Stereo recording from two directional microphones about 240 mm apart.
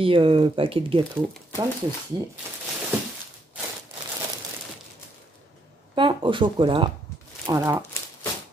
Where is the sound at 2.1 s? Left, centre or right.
Centre.